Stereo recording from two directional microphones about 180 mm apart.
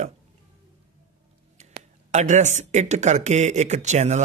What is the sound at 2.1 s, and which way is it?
Speech, 40° right (ahead or behind).